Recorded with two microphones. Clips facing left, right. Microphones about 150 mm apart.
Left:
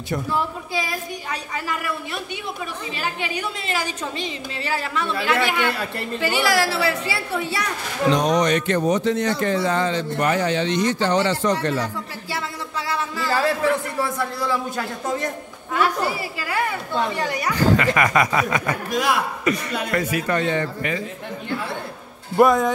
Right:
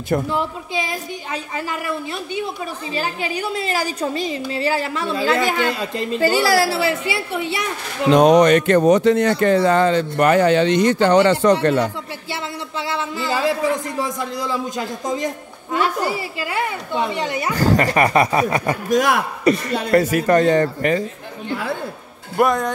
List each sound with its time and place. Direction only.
0.3 s speech: 20° right (ahead or behind)
2.9 s a woman's voice: 35° right (ahead or behind)
5.7 s a man's voice: 15° right (ahead or behind)
6.1 s a woman's voice: 40° right (ahead or behind); by 7.7 s 20° right (ahead or behind)
8.1 s speech: 60° right (ahead or behind)
8.8 s speech: 70° right (ahead or behind)
12.8 s a man's voice: 25° right (ahead or behind)
16.3 s speech: 20° right (ahead or behind)
17.6 s a woman's voice: 40° right (ahead or behind)
18.9 s a man's voice: 55° right (ahead or behind)
19.4 s a woman's voice: 35° right (ahead or behind)
22.4 s speech: centre (ahead or behind)